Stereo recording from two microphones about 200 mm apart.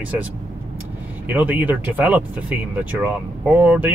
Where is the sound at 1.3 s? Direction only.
10° right (ahead or behind).